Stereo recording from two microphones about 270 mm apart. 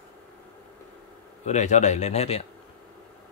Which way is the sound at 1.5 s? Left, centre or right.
Left.